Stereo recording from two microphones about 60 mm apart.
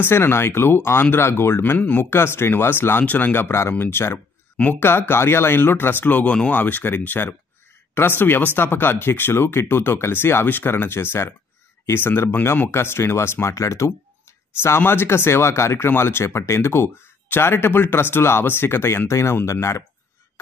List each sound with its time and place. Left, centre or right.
0.0 s speech: left
3.0 s speech: left
4.6 s speech: left
4.8 s speech: left; by 6.6 s centre
6.6 s speech: left
14.8 s speech: left